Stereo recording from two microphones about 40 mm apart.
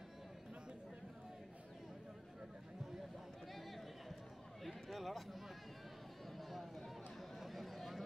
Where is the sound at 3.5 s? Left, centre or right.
Centre.